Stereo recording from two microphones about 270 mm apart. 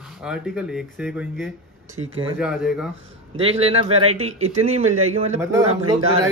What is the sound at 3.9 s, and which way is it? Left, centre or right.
Speech, right.